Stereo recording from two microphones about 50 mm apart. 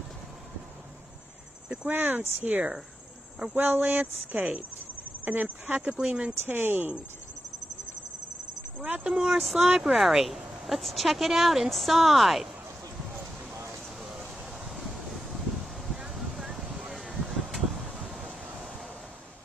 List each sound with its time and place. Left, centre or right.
1.9 s speech: right
5.8 s speech: centre
6.4 s speech: right
8.8 s speech: right
9.1 s speech: centre
14.0 s wind: centre